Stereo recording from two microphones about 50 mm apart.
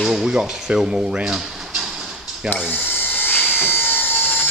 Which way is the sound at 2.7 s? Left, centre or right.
Left.